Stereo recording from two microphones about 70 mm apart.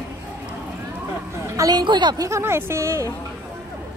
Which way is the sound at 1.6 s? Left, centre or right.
Right.